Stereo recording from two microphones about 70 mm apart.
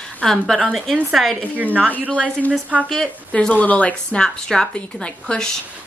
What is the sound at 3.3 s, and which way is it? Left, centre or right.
A woman's voice, centre.